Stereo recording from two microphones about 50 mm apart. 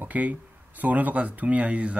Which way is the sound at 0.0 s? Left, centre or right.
Right.